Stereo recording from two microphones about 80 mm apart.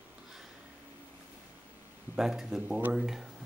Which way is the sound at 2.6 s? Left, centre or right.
Right.